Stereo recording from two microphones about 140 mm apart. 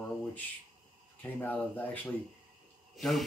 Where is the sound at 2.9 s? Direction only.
Centre (ahead or behind).